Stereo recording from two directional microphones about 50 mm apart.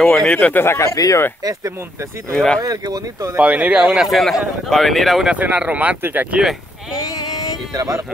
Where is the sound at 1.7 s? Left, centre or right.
Right.